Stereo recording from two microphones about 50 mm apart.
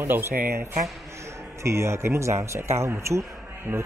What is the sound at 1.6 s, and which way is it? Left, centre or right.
Speech, right.